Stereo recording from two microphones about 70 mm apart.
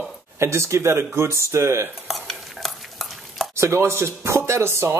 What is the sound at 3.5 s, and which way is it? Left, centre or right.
Speech, right.